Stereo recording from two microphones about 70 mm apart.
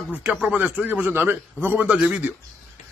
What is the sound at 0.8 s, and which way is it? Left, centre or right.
A man's voice, right.